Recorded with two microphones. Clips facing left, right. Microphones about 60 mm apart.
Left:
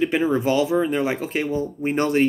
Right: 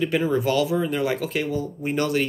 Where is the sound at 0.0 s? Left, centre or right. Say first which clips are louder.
Left 2 dB; left.